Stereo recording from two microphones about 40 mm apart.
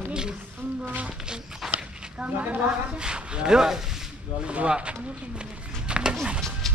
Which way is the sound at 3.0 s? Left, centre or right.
Right.